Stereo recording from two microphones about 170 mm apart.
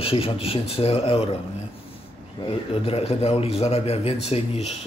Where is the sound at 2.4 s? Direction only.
35° left (ahead or behind).